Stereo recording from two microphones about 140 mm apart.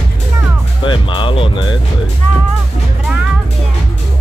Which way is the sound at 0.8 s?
35° left (ahead or behind).